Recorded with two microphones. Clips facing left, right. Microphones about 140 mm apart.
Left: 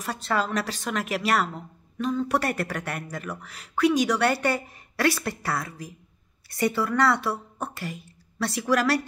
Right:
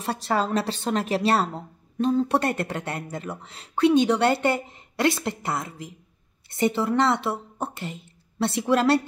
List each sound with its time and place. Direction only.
0.0 s a woman's voice: 30° right (ahead or behind)